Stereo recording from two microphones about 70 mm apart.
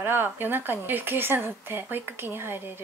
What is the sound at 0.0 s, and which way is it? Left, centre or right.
Speech, right.